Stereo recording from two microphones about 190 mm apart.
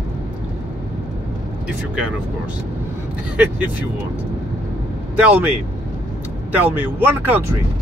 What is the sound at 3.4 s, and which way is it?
Speech, 10° right (ahead or behind).